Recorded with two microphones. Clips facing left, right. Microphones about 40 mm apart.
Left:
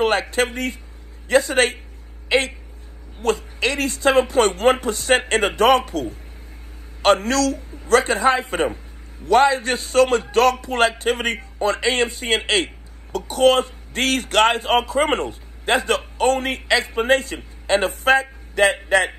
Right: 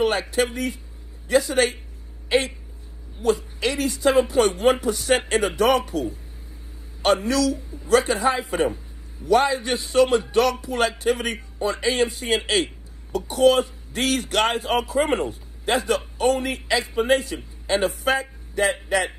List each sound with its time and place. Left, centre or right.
0.0 s a man's voice: left